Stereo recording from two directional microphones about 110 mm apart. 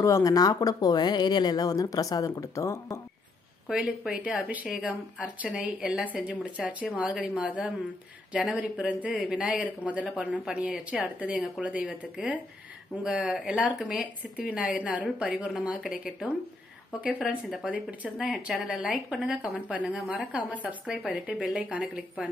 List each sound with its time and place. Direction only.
0.0 s speech: 30° left (ahead or behind)
3.6 s speech: 5° right (ahead or behind)
17.3 s speech: 10° right (ahead or behind)